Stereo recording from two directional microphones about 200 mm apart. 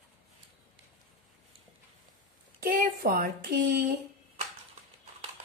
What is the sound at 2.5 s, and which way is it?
A woman's voice, 45° right (ahead or behind).